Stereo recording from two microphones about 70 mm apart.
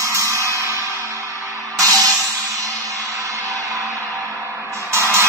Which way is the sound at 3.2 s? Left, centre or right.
Right.